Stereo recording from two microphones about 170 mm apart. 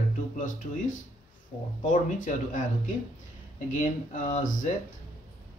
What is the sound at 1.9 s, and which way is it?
Speech, 50° left (ahead or behind).